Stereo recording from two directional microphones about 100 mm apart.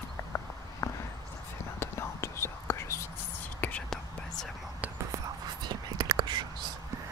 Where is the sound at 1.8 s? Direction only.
25° left (ahead or behind).